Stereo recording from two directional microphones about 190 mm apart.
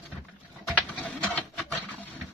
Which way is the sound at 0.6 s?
10° left (ahead or behind).